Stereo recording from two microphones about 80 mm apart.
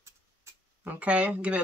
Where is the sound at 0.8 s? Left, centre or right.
Centre.